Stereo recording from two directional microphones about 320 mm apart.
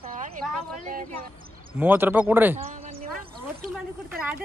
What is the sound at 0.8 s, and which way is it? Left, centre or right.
Speech, right.